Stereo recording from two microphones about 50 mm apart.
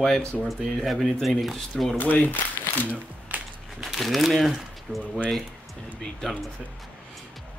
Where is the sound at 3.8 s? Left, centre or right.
Centre.